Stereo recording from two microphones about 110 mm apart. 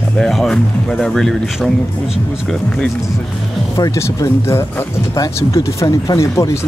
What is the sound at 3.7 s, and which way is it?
Speech, 30° left (ahead or behind).